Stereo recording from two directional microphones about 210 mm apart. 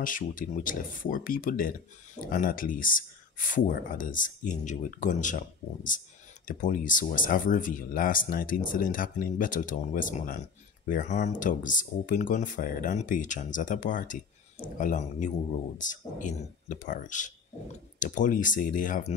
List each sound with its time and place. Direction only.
0.0 s speech: 40° left (ahead or behind)